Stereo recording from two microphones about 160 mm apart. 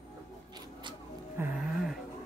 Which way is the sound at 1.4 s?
15° right (ahead or behind).